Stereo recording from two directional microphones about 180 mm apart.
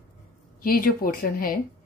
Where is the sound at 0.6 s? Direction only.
50° left (ahead or behind).